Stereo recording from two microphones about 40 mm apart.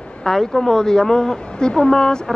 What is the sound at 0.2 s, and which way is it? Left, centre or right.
A woman's voice, centre.